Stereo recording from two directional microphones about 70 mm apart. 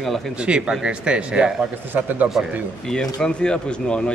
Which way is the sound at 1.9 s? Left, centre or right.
Right.